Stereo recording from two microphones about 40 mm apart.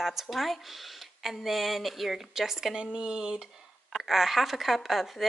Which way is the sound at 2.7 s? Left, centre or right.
Right.